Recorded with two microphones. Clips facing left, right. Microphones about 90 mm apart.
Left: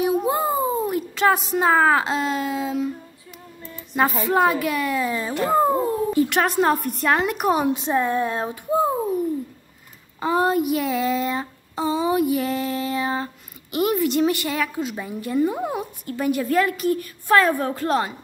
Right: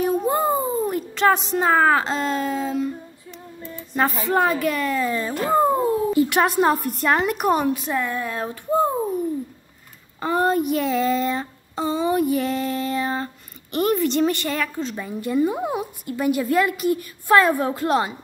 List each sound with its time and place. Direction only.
0.0 s a sound: 5° left (ahead or behind)
3.9 s speech: centre (ahead or behind)
7.6 s speech: 25° left (ahead or behind)
8.6 s speech: 5° left (ahead or behind)
10.2 s speech: centre (ahead or behind)